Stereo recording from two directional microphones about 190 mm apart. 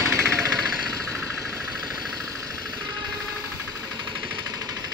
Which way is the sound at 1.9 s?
20° right (ahead or behind).